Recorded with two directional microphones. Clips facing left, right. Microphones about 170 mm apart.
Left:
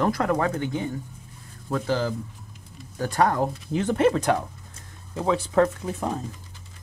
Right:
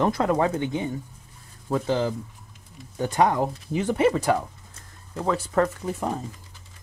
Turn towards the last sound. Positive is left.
turn(degrees=-5)  # may be behind; listen again after turning